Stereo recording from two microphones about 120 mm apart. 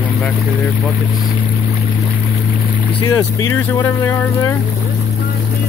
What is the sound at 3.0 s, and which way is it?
Speech, 25° left (ahead or behind).